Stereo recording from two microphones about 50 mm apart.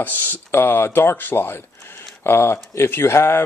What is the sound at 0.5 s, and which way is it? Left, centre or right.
Speech, left.